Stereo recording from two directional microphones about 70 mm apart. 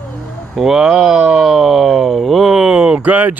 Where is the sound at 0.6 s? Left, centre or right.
Centre.